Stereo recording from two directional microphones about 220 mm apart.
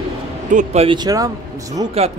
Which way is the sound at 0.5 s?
30° right (ahead or behind).